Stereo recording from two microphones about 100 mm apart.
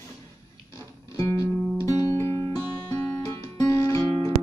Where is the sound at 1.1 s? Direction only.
35° left (ahead or behind).